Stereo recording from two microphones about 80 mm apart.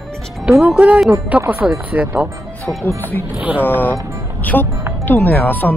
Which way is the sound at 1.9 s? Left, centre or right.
Centre.